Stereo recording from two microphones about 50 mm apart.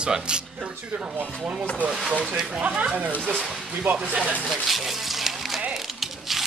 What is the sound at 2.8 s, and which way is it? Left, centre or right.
Speech, right.